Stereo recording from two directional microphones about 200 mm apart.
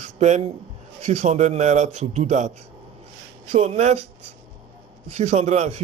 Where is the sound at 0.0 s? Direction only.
35° right (ahead or behind).